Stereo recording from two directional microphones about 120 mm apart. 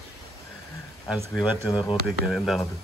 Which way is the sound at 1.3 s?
5° right (ahead or behind).